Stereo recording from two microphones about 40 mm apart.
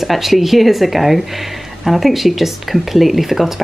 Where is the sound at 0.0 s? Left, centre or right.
Centre.